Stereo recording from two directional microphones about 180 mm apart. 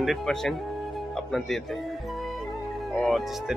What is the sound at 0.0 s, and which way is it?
Speech, centre (ahead or behind).